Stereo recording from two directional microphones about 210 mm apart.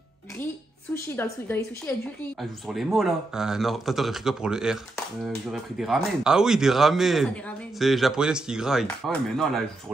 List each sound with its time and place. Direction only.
1.0 s a woman's voice: 10° left (ahead or behind)
2.7 s speech: centre (ahead or behind)